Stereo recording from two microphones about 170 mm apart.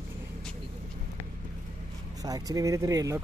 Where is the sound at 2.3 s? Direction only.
20° right (ahead or behind).